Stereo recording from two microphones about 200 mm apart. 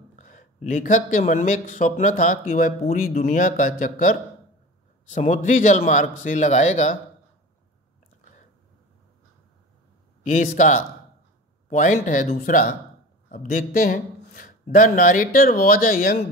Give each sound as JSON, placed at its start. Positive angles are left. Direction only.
{"t": 0.1, "sound": "speech", "side_deg": 40}
{"t": 10.2, "sound": "speech", "side_deg": 40}